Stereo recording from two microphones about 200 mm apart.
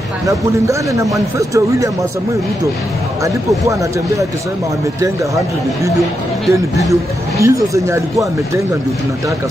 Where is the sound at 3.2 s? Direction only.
15° right (ahead or behind).